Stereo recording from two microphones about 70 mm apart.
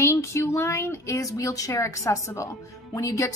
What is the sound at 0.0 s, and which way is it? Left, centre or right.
Speech, left.